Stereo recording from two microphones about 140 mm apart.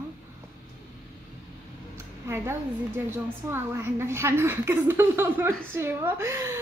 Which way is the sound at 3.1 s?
15° right (ahead or behind).